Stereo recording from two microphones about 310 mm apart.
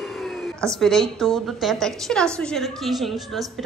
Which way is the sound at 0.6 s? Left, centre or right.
Centre.